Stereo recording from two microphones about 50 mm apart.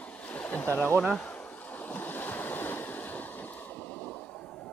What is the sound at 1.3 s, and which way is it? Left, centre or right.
Waves, left.